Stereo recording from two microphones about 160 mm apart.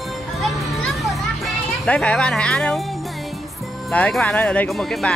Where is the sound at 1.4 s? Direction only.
5° left (ahead or behind).